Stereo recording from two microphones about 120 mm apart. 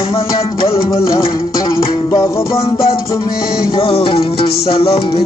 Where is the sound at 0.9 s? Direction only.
30° left (ahead or behind).